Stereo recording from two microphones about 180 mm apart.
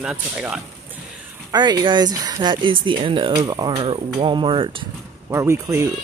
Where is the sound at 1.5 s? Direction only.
25° right (ahead or behind).